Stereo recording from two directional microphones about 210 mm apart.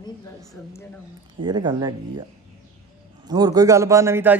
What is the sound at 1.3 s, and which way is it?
A man's voice, 20° right (ahead or behind).